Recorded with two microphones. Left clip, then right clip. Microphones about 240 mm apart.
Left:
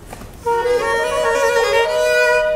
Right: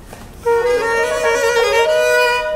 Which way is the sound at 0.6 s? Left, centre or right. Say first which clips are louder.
Right 1 dB; right.